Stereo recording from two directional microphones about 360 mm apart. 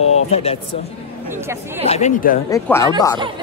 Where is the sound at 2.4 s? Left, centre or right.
Centre.